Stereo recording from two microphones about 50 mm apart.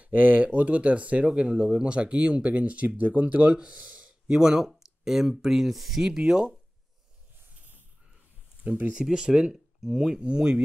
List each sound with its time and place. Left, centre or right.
0.0 s speech: right
4.3 s speech: centre
8.6 s speech: right
8.9 s speech: centre
9.8 s speech: centre
10.1 s speech: centre